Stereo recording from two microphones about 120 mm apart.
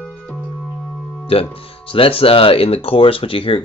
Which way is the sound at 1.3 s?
50° left (ahead or behind).